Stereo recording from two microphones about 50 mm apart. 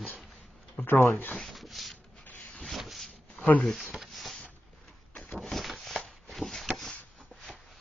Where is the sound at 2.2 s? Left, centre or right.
Left.